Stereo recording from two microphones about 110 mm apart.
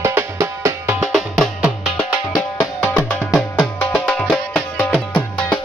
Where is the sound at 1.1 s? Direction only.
Centre (ahead or behind).